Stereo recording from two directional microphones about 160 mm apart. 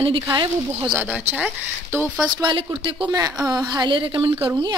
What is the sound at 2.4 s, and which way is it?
Speech, 30° right (ahead or behind).